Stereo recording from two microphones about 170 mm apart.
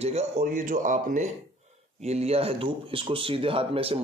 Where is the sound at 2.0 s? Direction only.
40° right (ahead or behind).